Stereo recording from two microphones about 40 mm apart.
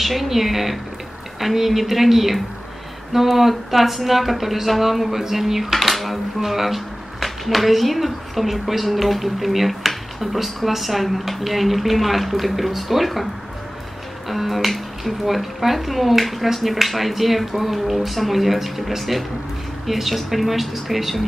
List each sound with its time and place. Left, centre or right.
0.0 s speech: centre
14.3 s speech: centre